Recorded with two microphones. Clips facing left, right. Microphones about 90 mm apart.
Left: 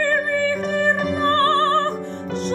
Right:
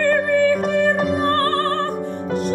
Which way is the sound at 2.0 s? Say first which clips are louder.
Right 3 dB; 40° right (ahead or behind).